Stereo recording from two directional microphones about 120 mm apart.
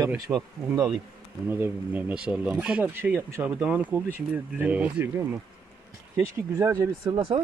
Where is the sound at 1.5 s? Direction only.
15° right (ahead or behind).